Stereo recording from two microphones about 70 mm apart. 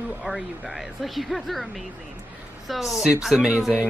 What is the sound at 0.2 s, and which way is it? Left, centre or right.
Speech, centre.